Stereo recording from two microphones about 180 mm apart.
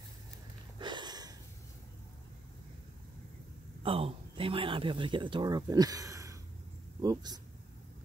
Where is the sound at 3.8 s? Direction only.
30° right (ahead or behind).